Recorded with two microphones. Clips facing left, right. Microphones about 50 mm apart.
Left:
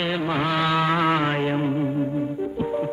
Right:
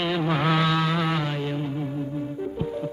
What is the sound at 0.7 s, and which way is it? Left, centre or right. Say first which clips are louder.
Music: left 4 dB; left.